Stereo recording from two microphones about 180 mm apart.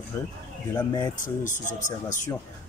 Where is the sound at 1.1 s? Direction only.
45° left (ahead or behind).